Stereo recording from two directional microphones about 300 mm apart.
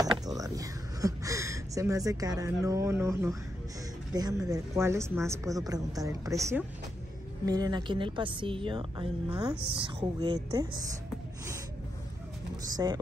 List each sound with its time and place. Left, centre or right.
0.0 s a sound: centre
4.1 s a woman's voice: centre
12.7 s a woman's voice: centre